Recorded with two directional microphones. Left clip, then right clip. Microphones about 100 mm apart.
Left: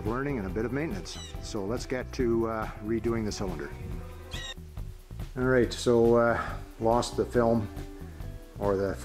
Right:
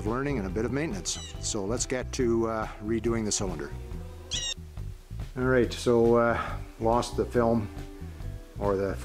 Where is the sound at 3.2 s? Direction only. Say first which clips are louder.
Right 3 dB; 10° right (ahead or behind).